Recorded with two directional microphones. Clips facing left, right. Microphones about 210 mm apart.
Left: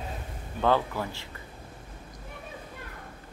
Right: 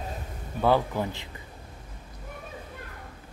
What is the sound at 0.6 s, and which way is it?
Speech, 15° right (ahead or behind).